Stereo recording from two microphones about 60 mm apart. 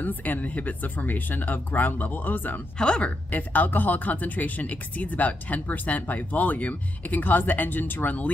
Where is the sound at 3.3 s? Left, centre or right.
Left.